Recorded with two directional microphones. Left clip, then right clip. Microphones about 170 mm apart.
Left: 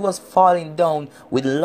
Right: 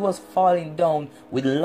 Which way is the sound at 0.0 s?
45° left (ahead or behind).